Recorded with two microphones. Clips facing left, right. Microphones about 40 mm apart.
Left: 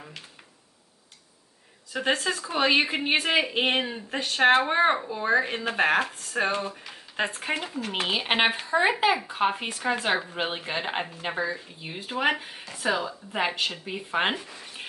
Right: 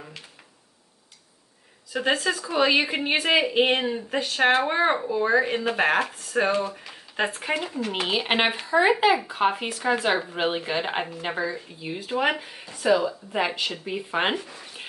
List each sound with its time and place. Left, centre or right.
1.9 s a woman's voice: centre; by 13.1 s left
13.3 s speech: centre
13.8 s speech: centre